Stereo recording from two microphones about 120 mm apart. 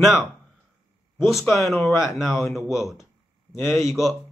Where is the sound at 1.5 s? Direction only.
Centre (ahead or behind).